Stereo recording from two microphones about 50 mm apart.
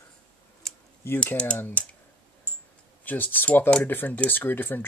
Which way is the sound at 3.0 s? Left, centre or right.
Left.